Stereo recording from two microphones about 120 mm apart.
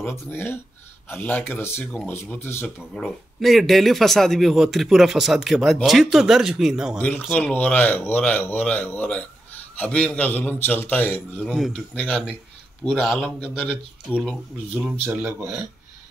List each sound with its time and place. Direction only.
0.3 s a man's voice: 20° left (ahead or behind); by 7.0 s 5° right (ahead or behind)
7.3 s a man's voice: 15° left (ahead or behind)
11.3 s speech: centre (ahead or behind)
13.0 s speech: 5° right (ahead or behind)